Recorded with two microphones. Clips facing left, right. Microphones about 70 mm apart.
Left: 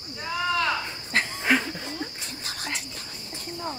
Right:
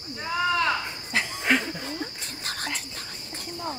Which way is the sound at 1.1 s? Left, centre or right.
Left.